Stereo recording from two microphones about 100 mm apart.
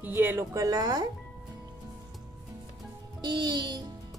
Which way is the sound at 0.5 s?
35° right (ahead or behind).